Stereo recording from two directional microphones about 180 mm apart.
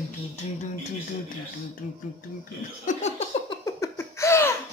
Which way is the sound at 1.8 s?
50° left (ahead or behind).